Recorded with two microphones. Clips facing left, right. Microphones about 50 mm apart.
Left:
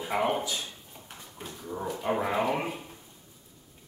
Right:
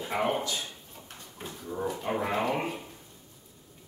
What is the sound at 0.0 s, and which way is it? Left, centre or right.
Speech, centre.